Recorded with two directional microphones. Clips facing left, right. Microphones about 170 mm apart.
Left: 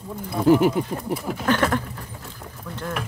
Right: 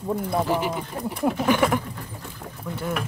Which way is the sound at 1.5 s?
10° right (ahead or behind).